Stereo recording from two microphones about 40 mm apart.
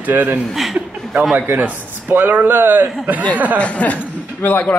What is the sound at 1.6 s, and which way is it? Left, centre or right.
Speech, right.